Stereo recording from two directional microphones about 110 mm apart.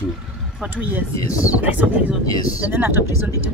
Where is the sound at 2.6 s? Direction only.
20° right (ahead or behind).